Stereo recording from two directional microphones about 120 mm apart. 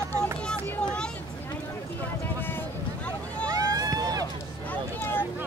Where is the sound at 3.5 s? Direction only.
30° right (ahead or behind).